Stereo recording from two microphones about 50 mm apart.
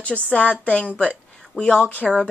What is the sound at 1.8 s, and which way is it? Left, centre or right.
Speech, left.